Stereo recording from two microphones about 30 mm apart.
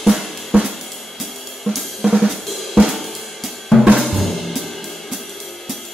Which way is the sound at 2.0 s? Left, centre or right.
Right.